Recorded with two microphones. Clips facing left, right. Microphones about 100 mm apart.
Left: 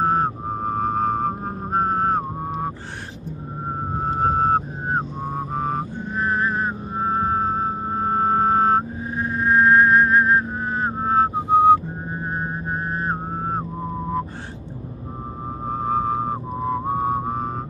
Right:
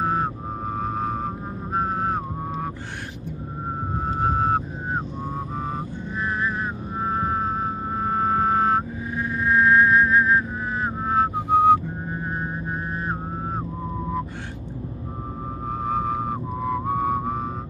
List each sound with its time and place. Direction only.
0.0 s vehicle: 40° left (ahead or behind)
4.0 s vehicle: 40° left (ahead or behind)
5.5 s vehicle: 50° left (ahead or behind); by 11.8 s 25° left (ahead or behind)
12.4 s vehicle: 35° left (ahead or behind)
15.8 s a sound: 30° left (ahead or behind)